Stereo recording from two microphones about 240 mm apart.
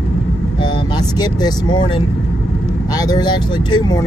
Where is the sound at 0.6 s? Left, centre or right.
Centre.